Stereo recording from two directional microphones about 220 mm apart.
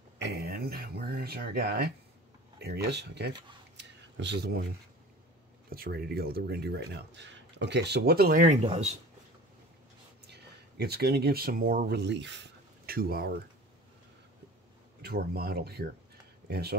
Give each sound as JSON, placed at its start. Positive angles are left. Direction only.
{"t": 0.3, "sound": "a sound", "side_deg": -45}
{"t": 2.6, "sound": "speech", "side_deg": -50}
{"t": 3.7, "sound": "whispering", "side_deg": -50}
{"t": 5.7, "sound": "speech", "side_deg": -45}
{"t": 8.6, "sound": "speech", "side_deg": -30}
{"t": 10.2, "sound": "speech", "side_deg": -50}
{"t": 15.0, "sound": "speech", "side_deg": -45}